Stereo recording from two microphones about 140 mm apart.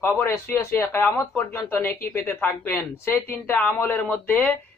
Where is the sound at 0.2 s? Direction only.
20° left (ahead or behind).